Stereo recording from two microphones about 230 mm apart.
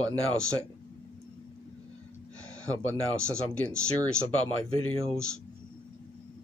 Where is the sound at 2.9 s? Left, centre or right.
Centre.